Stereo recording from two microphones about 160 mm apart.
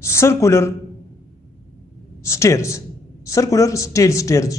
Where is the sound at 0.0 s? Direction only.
15° left (ahead or behind).